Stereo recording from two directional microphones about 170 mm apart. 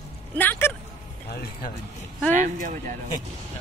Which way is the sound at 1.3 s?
65° left (ahead or behind).